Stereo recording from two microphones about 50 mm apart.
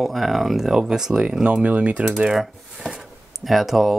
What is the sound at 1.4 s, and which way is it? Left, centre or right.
Speech, right.